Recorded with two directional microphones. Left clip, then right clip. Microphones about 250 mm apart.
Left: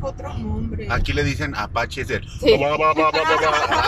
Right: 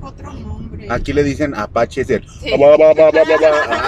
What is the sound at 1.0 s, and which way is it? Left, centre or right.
Speech, right.